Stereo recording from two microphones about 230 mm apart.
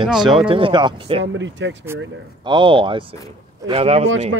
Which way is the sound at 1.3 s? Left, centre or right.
Right.